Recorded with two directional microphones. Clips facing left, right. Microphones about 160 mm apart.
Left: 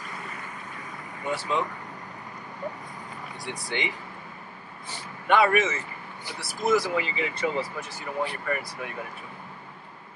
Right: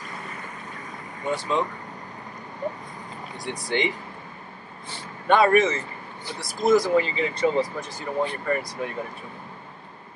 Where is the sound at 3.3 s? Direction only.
45° right (ahead or behind).